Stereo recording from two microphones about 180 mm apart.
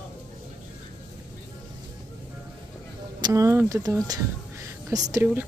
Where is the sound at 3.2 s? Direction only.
15° right (ahead or behind).